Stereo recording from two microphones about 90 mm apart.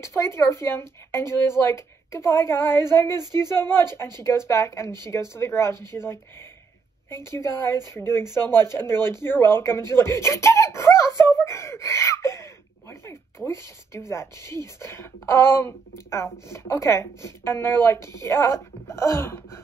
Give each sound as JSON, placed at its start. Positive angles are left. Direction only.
{"t": 0.0, "sound": "speech", "side_deg": 30}
{"t": 13.5, "sound": "speech", "side_deg": 30}